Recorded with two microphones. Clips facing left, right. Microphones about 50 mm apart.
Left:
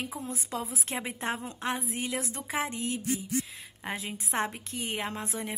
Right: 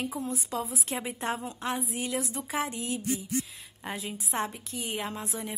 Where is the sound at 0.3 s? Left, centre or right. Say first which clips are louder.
Right 2 dB; left.